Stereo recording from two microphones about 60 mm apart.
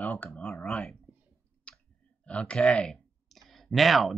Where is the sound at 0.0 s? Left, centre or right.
Left.